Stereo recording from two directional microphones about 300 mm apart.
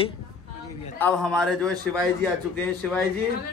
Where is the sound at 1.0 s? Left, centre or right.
Centre.